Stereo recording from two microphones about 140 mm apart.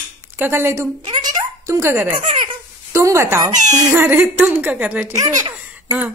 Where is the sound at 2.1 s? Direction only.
70° right (ahead or behind).